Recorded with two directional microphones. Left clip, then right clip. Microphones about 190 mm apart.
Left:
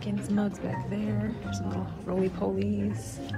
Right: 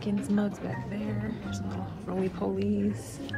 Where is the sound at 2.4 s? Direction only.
15° right (ahead or behind).